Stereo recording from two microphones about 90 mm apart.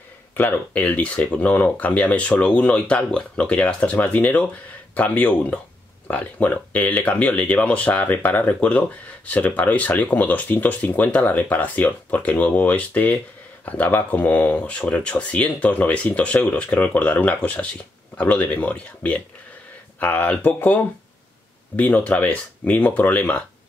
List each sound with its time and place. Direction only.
0.4 s speech: 20° left (ahead or behind)